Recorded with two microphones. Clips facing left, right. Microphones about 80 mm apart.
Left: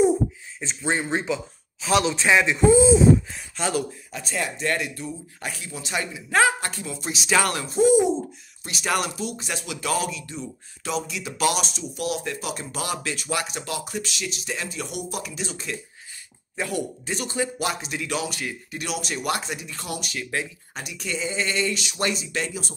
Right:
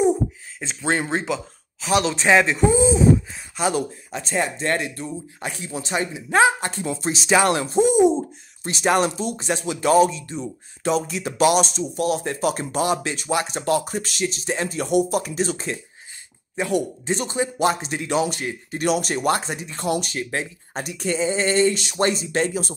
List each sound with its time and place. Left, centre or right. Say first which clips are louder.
0.6 s speech: right 3 dB; right
2.0 s speech: right 3 dB; right
12.8 s speech: right 6 dB; right
16.5 s speech: right 5 dB; right